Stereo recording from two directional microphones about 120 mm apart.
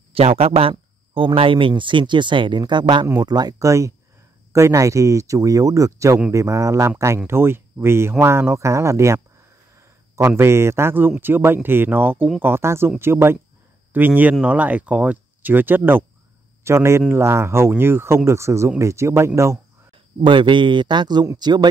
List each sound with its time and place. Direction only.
0.1 s speech: 55° right (ahead or behind); by 19.6 s 25° right (ahead or behind)
20.2 s speech: 45° right (ahead or behind)